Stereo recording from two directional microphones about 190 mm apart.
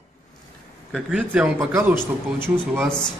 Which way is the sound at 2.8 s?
5° left (ahead or behind).